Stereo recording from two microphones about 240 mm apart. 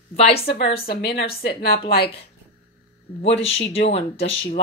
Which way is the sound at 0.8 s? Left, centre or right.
Left.